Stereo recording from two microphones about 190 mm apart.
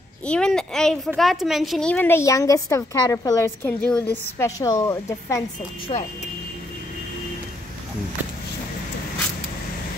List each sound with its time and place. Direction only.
0.2 s a woman's voice: 5° left (ahead or behind); by 6.0 s 25° left (ahead or behind)